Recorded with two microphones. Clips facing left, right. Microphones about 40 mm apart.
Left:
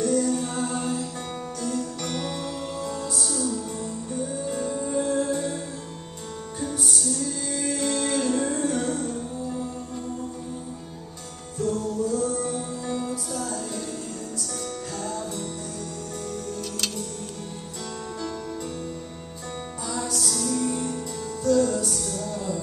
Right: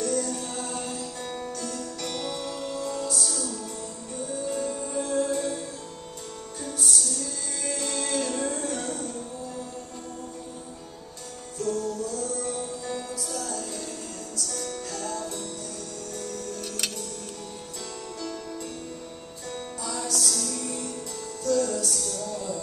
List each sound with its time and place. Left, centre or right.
0.0 s music: centre
6.6 s music: centre
11.5 s music: centre
20.2 s music: centre